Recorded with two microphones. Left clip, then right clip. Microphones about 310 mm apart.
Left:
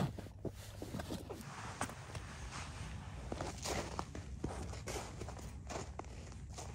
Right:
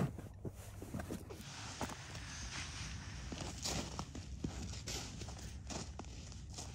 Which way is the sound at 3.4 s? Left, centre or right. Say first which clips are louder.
Even; left.